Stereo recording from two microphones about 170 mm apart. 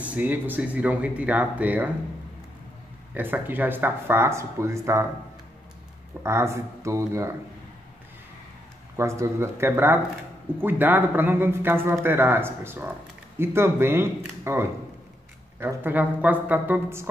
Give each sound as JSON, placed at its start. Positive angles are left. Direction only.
{"t": 0.0, "sound": "a man's voice", "side_deg": -10}
{"t": 3.2, "sound": "a man's voice", "side_deg": -10}
{"t": 6.2, "sound": "a man's voice", "side_deg": -15}
{"t": 8.9, "sound": "a man's voice", "side_deg": -15}